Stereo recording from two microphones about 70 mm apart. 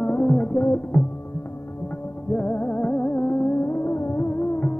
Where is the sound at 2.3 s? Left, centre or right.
Left.